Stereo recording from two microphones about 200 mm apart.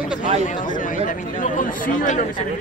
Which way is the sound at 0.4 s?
40° left (ahead or behind).